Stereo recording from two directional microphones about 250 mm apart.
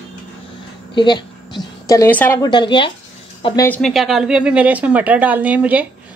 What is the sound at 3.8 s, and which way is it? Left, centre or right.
A woman's voice, centre.